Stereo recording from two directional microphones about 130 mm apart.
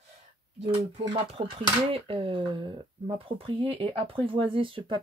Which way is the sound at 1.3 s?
45° right (ahead or behind).